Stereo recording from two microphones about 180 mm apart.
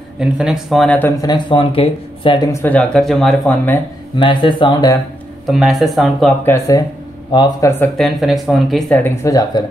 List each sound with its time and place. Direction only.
0.2 s speech: 5° right (ahead or behind)
4.2 s speech: 25° left (ahead or behind)
5.5 s speech: centre (ahead or behind)
6.4 s speech: 15° left (ahead or behind)
7.8 s speech: centre (ahead or behind); by 9.7 s 20° left (ahead or behind)